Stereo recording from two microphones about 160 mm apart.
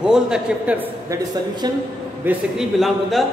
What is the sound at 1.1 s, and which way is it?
Speech, 25° right (ahead or behind).